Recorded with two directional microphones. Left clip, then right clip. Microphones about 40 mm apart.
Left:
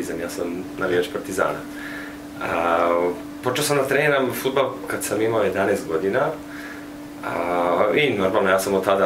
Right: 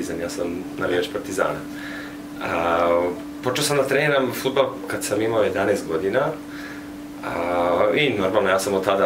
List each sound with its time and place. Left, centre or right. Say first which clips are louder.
0.7 s speech: left 1 dB; centre
2.4 s speech: even; centre
3.5 s speech: even; centre
5.1 s speech: even; centre